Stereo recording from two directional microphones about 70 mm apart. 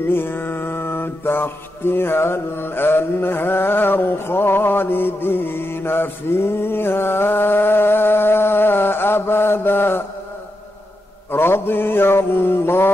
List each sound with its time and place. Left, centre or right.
0.1 s mantra: left
11.3 s mantra: left